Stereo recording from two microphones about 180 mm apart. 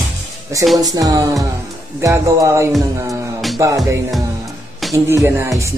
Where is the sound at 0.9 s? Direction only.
20° right (ahead or behind).